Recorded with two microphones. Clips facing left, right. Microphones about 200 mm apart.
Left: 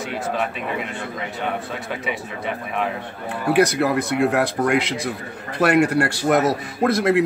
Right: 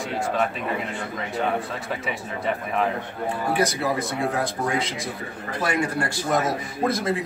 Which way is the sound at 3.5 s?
70° left (ahead or behind).